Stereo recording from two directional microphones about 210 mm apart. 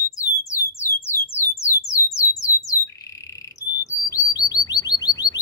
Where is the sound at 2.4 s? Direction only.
15° left (ahead or behind).